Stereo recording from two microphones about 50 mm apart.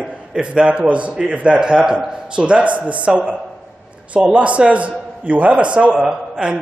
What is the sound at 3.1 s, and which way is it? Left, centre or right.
Speech, centre.